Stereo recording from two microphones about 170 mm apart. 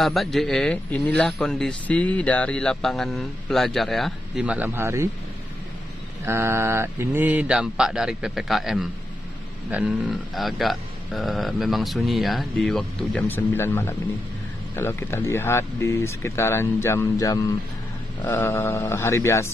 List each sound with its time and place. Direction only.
0.0 s speech: centre (ahead or behind); by 5.1 s 15° right (ahead or behind)
6.2 s speech: 15° right (ahead or behind); by 19.5 s 15° left (ahead or behind)